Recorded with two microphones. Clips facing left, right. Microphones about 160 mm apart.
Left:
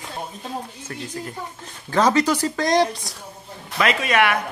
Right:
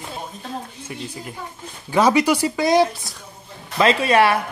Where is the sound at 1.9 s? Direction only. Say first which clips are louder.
Right 2 dB; 10° right (ahead or behind).